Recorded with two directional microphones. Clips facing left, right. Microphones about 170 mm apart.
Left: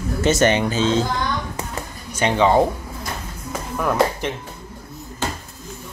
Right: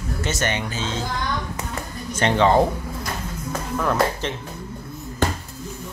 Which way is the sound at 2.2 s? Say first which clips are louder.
Left 1 dB; 10° left (ahead or behind).